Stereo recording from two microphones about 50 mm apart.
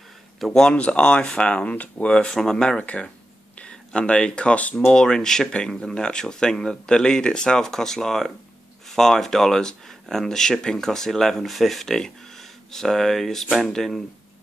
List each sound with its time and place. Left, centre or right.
0.4 s speech: centre
0.7 s speech: left
2.0 s speech: centre
2.8 s speech: left; by 14.0 s centre